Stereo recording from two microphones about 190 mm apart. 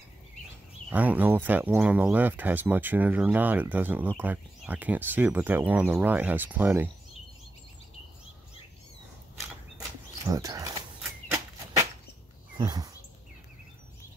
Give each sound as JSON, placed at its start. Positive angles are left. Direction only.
{"t": 0.8, "sound": "speech", "side_deg": -10}
{"t": 10.3, "sound": "speech", "side_deg": -20}
{"t": 12.5, "sound": "a sound", "side_deg": -20}